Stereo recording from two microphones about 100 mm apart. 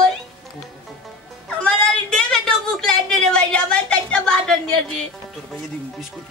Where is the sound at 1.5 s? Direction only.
10° left (ahead or behind).